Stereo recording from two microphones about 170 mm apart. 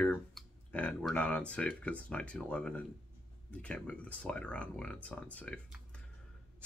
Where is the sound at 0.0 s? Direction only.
10° left (ahead or behind).